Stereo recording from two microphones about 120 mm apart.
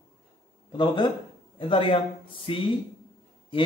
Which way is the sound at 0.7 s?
40° left (ahead or behind).